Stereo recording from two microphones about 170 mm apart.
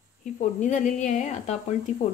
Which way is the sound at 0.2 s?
45° left (ahead or behind).